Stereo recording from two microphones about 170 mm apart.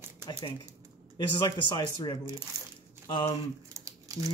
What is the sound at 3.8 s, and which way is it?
Crumpling, 20° right (ahead or behind).